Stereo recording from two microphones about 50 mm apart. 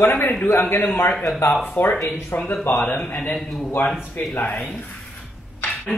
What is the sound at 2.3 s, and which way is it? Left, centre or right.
Speech, left.